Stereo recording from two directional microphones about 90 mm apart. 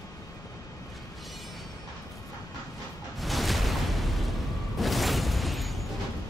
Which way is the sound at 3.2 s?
Centre (ahead or behind).